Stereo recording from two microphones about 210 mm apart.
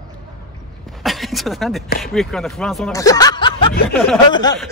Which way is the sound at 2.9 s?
15° left (ahead or behind).